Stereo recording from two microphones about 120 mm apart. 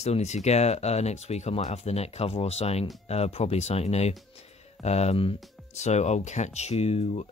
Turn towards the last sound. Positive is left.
turn(degrees=60)  # may be behind; listen again after turning